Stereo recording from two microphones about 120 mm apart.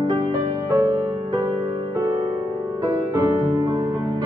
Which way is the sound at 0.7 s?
30° right (ahead or behind).